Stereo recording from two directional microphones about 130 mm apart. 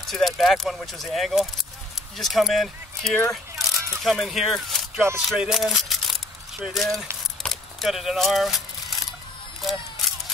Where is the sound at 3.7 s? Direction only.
20° right (ahead or behind).